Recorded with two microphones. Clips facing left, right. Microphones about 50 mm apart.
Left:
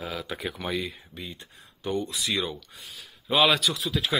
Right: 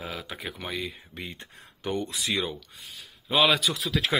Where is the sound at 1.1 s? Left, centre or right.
Right.